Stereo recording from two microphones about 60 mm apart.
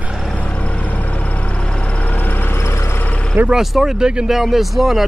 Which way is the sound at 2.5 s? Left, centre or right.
Left.